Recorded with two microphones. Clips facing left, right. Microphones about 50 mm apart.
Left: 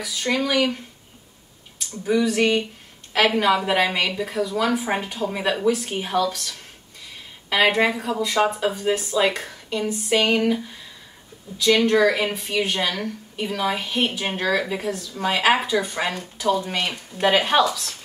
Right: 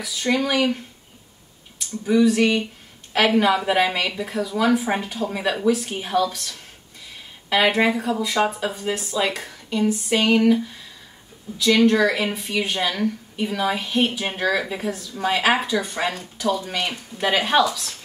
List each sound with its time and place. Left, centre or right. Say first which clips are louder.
0.0 s a woman's voice: right 1 dB; centre
2.0 s a woman's voice: right 2 dB; centre
11.5 s a woman's voice: right 1 dB; centre